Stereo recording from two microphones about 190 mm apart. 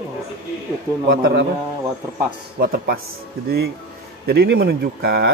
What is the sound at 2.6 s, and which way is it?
Speech, 50° right (ahead or behind).